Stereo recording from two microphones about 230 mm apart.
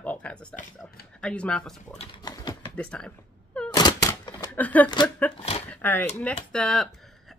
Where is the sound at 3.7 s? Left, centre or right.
Centre.